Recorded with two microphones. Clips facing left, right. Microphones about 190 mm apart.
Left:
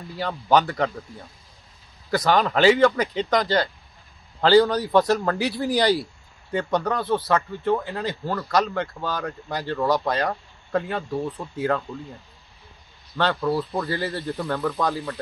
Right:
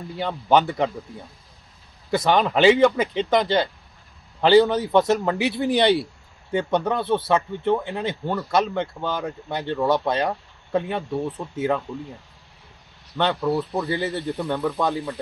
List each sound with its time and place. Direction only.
0.2 s a man's voice: 20° right (ahead or behind)
13.2 s a man's voice: 20° right (ahead or behind)